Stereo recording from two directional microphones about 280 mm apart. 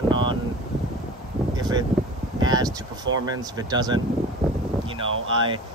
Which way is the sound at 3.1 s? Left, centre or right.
Centre.